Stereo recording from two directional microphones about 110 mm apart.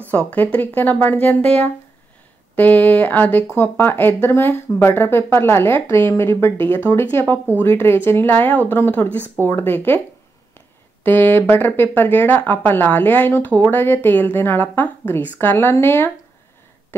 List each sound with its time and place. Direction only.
0.0 s speech: 15° left (ahead or behind)
11.1 s speech: 15° left (ahead or behind)